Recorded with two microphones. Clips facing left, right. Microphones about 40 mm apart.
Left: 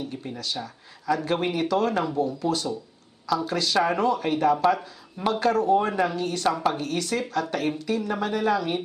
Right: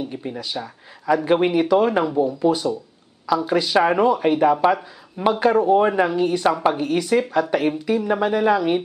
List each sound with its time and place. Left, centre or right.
0.0 s speech: centre